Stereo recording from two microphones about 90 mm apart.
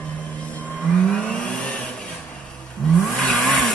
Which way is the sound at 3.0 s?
5° left (ahead or behind).